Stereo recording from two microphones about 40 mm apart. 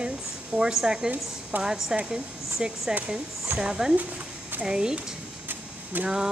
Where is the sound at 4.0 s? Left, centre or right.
Right.